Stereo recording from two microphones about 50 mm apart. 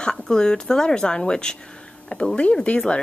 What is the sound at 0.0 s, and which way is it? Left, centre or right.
Speech, centre.